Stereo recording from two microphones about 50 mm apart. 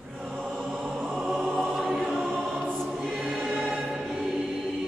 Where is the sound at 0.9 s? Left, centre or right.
Centre.